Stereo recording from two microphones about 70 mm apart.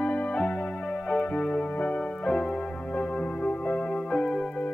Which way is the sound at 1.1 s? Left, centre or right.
Centre.